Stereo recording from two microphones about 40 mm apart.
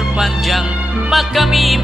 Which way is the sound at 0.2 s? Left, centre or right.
Centre.